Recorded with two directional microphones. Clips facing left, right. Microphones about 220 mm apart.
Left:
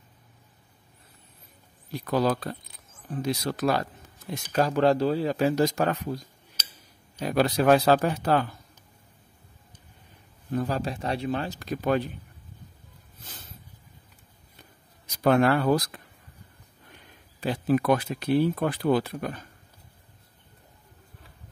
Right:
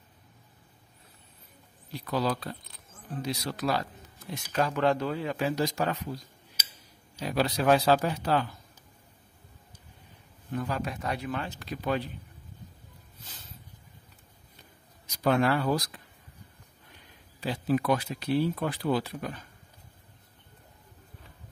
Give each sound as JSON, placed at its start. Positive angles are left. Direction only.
{"t": 1.9, "sound": "speech", "side_deg": 50}
{"t": 4.3, "sound": "speech", "side_deg": 40}
{"t": 7.2, "sound": "speech", "side_deg": 50}
{"t": 10.5, "sound": "speech", "side_deg": 35}
{"t": 15.0, "sound": "speech", "side_deg": 55}
{"t": 17.4, "sound": "speech", "side_deg": 55}